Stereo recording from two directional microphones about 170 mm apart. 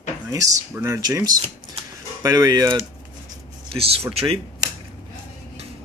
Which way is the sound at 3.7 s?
35° right (ahead or behind).